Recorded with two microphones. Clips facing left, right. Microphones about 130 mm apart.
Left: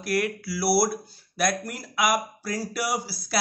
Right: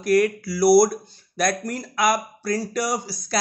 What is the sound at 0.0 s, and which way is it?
Speech, 5° left (ahead or behind).